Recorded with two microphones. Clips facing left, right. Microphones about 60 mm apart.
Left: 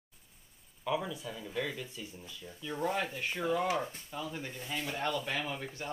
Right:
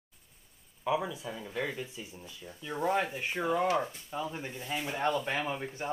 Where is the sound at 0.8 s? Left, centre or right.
Centre.